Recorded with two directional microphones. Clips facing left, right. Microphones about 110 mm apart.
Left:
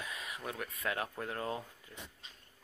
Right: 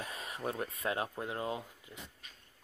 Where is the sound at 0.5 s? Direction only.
30° right (ahead or behind).